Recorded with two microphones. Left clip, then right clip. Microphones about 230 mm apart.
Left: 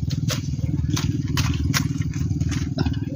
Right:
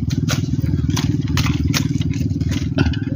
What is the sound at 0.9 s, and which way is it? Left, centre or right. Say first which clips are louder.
Vehicle: right 4 dB; centre.